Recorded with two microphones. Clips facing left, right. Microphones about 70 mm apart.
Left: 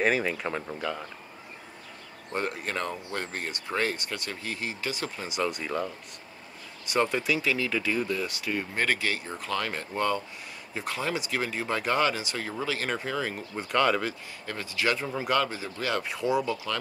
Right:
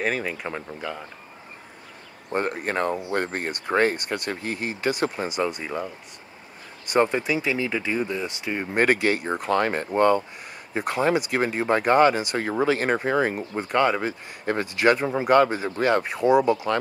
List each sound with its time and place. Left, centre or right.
0.0 s speech: centre
2.3 s speech: right
5.4 s speech: right
7.0 s speech: right
8.8 s speech: right
9.2 s speech: right
9.5 s speech: right
14.4 s speech: right
16.7 s speech: right